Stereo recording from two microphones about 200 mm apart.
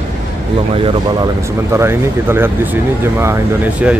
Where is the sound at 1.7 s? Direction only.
10° right (ahead or behind).